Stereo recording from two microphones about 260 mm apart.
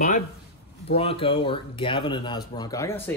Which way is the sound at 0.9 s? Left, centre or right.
Left.